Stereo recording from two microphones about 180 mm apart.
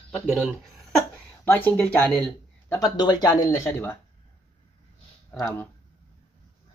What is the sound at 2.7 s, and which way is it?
Speech, 20° left (ahead or behind).